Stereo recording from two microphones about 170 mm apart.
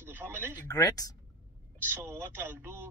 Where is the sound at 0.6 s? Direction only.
20° left (ahead or behind).